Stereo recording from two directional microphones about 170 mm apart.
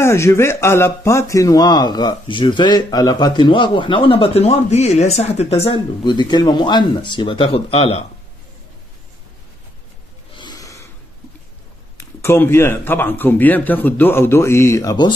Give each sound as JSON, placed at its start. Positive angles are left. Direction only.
{"t": 0.0, "sound": "speech", "side_deg": 15}
{"t": 10.3, "sound": "snort", "side_deg": 25}
{"t": 12.0, "sound": "speech", "side_deg": 15}